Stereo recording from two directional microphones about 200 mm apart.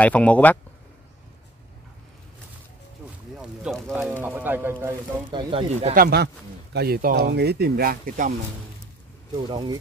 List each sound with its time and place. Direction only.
0.0 s speech: 5° left (ahead or behind)
3.3 s a sound: centre (ahead or behind)
5.3 s speech: 25° right (ahead or behind)
5.9 s speech: 55° right (ahead or behind)
9.5 s speech: 20° right (ahead or behind)